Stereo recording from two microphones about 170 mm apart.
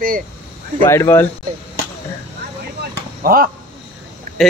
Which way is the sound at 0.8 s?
15° left (ahead or behind).